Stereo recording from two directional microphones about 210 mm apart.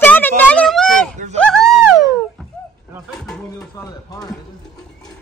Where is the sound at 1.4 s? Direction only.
5° left (ahead or behind).